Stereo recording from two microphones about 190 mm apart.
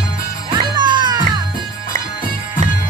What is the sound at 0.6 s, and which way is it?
Music, 20° right (ahead or behind).